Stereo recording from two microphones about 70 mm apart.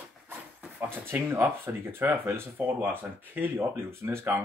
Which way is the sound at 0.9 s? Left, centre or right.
Right.